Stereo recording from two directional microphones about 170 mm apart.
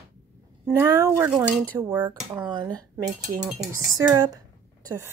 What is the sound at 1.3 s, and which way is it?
Speech, centre (ahead or behind).